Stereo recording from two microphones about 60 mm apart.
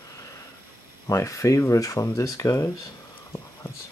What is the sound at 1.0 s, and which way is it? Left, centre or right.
Speech, left.